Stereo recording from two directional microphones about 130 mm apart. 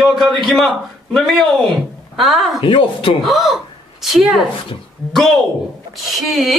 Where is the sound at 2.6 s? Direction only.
40° left (ahead or behind).